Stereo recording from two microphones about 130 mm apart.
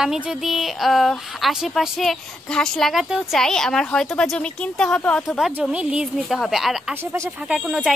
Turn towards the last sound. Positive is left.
turn(degrees=-5)  # may be behind; listen again after turning